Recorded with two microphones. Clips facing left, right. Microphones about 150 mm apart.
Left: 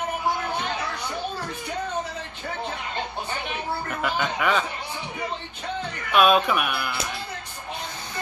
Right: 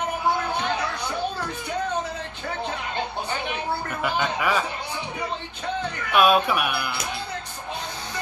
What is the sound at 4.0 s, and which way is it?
Speech, centre (ahead or behind).